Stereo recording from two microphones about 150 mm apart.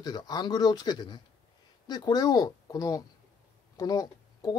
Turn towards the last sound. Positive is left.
turn(degrees=25)  # may be behind; listen again after turning